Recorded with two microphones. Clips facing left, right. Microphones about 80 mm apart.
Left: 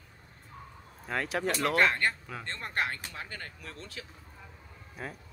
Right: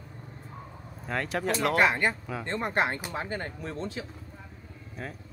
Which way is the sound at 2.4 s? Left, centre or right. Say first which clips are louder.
Right 6 dB; centre.